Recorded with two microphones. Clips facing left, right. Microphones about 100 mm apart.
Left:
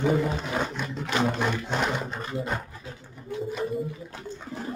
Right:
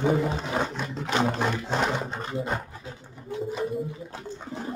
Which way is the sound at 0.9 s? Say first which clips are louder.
Right 1 dB; 35° right (ahead or behind).